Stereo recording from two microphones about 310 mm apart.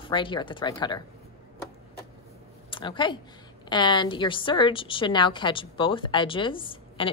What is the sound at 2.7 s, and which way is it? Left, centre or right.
A woman's voice, centre.